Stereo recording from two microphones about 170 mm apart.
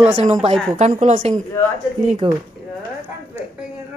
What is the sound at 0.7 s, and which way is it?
A woman's voice, 45° right (ahead or behind).